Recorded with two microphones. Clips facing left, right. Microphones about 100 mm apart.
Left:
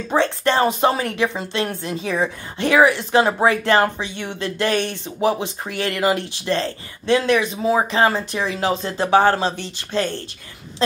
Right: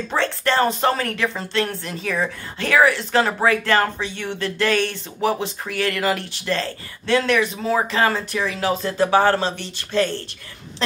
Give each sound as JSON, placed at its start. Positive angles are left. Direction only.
{"t": 0.1, "sound": "speech", "side_deg": 20}